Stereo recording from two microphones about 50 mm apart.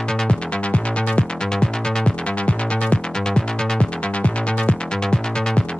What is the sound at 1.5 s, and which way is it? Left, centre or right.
Music, centre.